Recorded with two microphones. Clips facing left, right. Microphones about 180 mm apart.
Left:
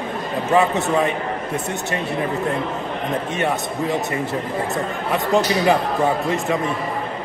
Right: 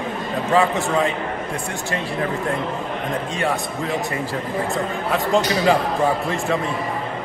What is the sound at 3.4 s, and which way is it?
Speech, 20° left (ahead or behind).